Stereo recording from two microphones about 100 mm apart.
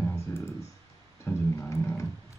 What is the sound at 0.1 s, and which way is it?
Clicking, 30° left (ahead or behind).